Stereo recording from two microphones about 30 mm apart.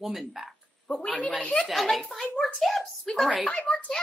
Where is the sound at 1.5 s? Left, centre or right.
Left.